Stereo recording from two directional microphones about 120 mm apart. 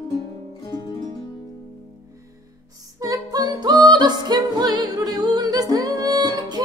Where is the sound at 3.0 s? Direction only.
30° right (ahead or behind).